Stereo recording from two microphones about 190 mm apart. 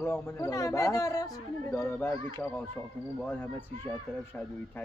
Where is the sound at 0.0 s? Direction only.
15° left (ahead or behind).